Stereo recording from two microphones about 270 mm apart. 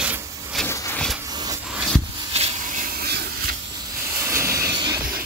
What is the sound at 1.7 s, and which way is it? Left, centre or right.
Rub, centre.